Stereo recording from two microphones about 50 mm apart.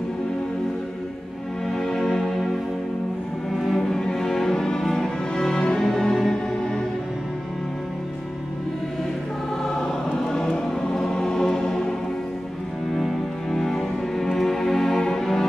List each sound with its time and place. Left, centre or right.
1.7 s music: centre
3.5 s music: centre
9.7 s choir: centre
13.5 s music: centre